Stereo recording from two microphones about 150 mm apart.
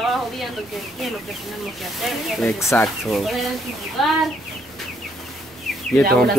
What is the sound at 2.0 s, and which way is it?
Speech, centre (ahead or behind).